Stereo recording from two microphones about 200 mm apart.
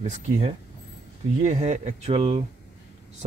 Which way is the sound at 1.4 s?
35° right (ahead or behind).